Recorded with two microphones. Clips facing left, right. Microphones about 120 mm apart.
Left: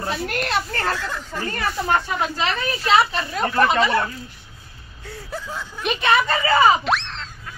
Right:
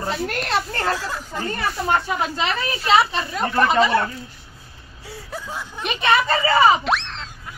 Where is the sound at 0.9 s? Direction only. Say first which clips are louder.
Right 1 dB; 15° right (ahead or behind).